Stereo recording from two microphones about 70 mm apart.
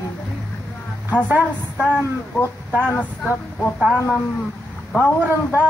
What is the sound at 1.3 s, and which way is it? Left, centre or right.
Speech, right.